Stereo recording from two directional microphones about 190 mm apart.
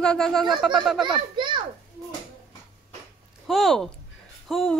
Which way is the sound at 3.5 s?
Centre (ahead or behind).